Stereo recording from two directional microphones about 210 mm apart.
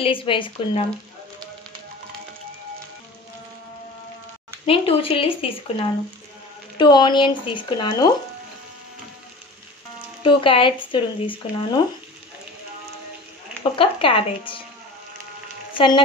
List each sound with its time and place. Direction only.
0.0 s speech: 25° left (ahead or behind)
4.6 s speech: 25° left (ahead or behind)
10.2 s speech: 25° left (ahead or behind)
13.7 s speech: 25° left (ahead or behind)